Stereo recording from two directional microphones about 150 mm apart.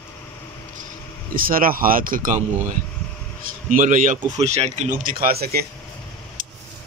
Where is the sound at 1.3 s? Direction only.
70° right (ahead or behind).